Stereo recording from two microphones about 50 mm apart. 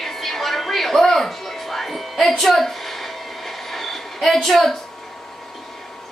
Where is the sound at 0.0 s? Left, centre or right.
Centre.